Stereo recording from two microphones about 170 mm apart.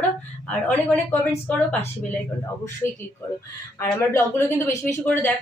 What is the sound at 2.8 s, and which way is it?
Speech, 15° left (ahead or behind).